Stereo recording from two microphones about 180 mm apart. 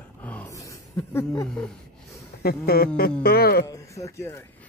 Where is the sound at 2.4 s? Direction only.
60° left (ahead or behind).